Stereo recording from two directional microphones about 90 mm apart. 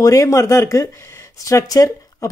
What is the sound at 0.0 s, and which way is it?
Speech, 35° left (ahead or behind).